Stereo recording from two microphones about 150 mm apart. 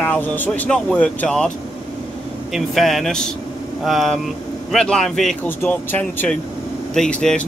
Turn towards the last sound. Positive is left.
turn(degrees=10)  # may be behind; listen again after turning